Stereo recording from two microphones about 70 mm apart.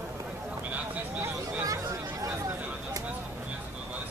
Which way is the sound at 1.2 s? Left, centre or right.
Right.